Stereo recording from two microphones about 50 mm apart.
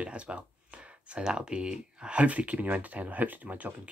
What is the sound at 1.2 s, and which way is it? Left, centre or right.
Speech, centre.